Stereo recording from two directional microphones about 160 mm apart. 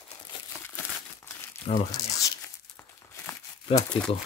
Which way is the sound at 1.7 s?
40° left (ahead or behind).